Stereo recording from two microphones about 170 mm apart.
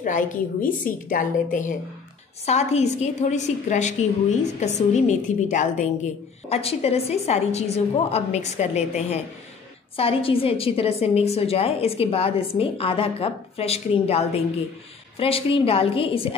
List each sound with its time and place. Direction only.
0.0 s a woman's voice: 50° left (ahead or behind)
2.4 s a woman's voice: 40° left (ahead or behind)
6.5 s a woman's voice: 35° left (ahead or behind)